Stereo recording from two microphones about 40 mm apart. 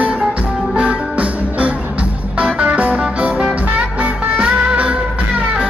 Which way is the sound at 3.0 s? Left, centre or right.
Right.